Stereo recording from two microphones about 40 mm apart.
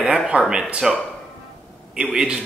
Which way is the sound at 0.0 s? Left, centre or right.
Right.